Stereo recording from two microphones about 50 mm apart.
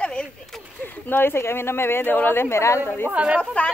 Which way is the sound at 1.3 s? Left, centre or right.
Left.